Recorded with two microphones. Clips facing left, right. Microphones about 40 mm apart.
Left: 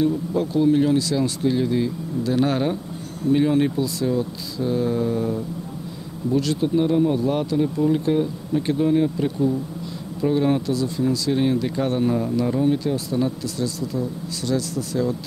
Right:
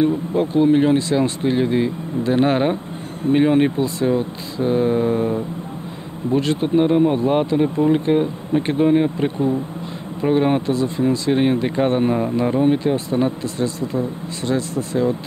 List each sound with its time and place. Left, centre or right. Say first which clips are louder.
0.0 s speech: right 3 dB; right